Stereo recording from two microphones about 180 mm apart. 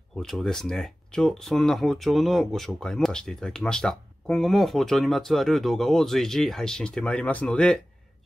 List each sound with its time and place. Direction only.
0.2 s speech: centre (ahead or behind)